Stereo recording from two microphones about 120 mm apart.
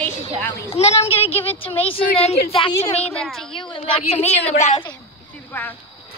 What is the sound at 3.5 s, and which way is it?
A woman's voice, 45° left (ahead or behind).